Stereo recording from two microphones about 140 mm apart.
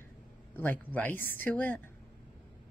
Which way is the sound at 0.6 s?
15° left (ahead or behind).